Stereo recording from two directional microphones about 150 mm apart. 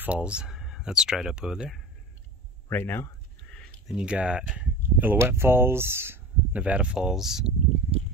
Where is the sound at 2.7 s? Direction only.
15° left (ahead or behind).